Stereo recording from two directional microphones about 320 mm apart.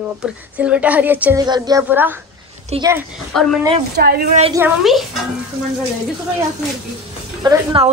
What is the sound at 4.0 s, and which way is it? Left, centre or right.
Speech, right.